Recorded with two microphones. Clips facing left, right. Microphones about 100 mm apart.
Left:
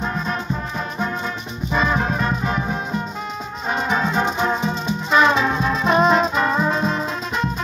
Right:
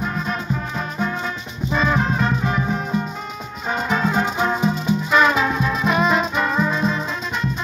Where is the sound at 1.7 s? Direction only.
20° left (ahead or behind).